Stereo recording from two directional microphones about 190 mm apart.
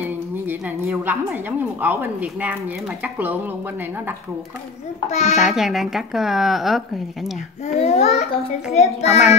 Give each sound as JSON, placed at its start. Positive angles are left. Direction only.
{"t": 0.0, "sound": "a woman's voice", "side_deg": -10}
{"t": 5.1, "sound": "a child's voice", "side_deg": 35}
{"t": 5.4, "sound": "speech", "side_deg": 0}
{"t": 7.6, "sound": "a child's voice", "side_deg": 35}